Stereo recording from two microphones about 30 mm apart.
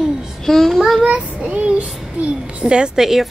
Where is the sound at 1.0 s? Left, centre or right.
Right.